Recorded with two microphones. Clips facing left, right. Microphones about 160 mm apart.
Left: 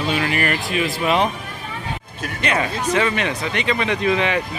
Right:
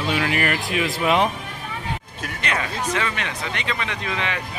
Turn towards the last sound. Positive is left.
turn(degrees=15)  # may be behind; listen again after turning